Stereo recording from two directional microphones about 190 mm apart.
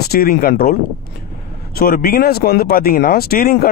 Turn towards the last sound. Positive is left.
turn(degrees=50)  # may be behind; listen again after turning